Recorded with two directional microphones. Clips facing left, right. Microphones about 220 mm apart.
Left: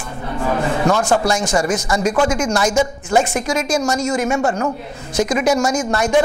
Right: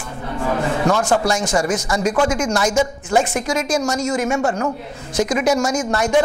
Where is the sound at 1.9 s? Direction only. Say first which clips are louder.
Left 1 dB; 20° left (ahead or behind).